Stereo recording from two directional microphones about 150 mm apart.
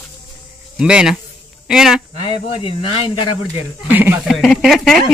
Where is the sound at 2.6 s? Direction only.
35° left (ahead or behind).